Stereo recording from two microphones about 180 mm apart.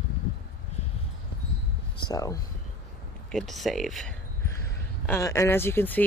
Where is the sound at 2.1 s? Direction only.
20° left (ahead or behind).